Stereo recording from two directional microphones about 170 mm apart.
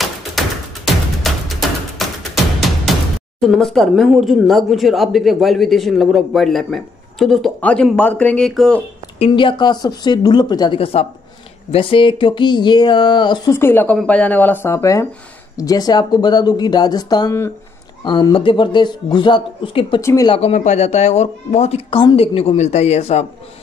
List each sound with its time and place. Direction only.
0.4 s music: centre (ahead or behind)
3.3 s speech: centre (ahead or behind)
9.2 s speech: 30° left (ahead or behind)
13.5 s speech: 15° left (ahead or behind); by 20.0 s 30° left (ahead or behind)
20.0 s speech: 15° left (ahead or behind)
20.2 s speech: 35° left (ahead or behind)